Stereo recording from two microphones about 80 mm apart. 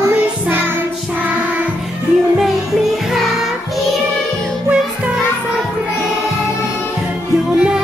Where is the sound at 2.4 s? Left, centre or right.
Centre.